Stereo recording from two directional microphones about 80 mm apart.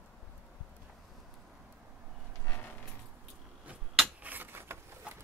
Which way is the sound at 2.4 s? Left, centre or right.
Left.